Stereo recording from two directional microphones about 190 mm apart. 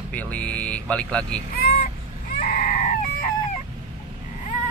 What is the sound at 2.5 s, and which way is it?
Screaming, 40° left (ahead or behind).